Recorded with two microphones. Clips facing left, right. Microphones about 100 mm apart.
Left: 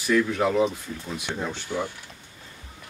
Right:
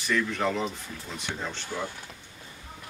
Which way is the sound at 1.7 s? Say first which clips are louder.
Left 5 dB; 15° left (ahead or behind).